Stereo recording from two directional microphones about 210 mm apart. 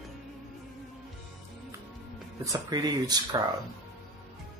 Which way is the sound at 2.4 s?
15° right (ahead or behind).